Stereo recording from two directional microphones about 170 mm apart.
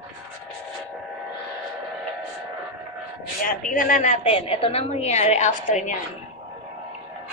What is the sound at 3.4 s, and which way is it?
A woman's voice, 55° left (ahead or behind).